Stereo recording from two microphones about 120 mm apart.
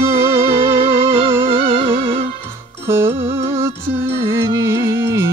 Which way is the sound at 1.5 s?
50° right (ahead or behind).